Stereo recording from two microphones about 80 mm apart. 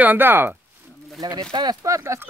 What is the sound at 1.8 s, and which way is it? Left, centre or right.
Speech, right.